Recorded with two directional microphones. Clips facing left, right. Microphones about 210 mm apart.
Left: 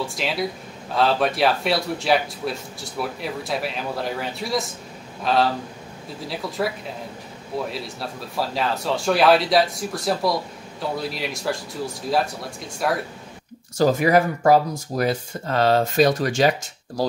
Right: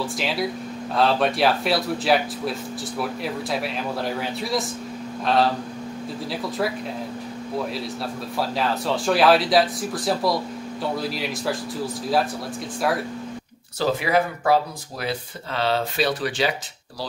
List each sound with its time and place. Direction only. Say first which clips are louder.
0.0 s a man's voice: even; centre (ahead or behind)
13.7 s speech: left 4 dB; 45° left (ahead or behind)